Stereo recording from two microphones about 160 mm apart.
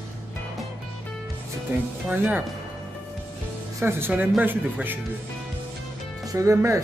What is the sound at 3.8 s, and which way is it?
Speech, 10° right (ahead or behind).